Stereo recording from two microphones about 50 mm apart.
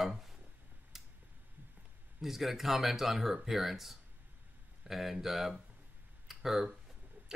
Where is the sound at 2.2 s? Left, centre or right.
Centre.